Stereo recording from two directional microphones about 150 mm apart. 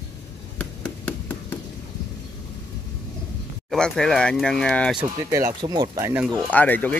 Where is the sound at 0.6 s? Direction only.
10° left (ahead or behind).